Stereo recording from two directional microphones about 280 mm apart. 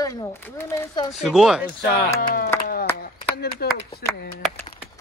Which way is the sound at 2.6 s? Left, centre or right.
Left.